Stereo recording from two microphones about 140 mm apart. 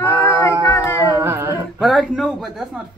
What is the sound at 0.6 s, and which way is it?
Speech, 20° left (ahead or behind).